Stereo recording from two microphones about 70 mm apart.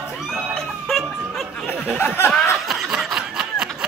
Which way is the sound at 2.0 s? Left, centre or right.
Left.